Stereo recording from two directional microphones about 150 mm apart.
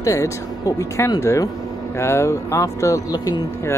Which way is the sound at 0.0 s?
20° left (ahead or behind).